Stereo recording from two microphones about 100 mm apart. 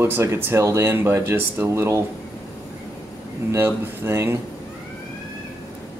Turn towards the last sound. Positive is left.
turn(degrees=-25)  # may be behind; listen again after turning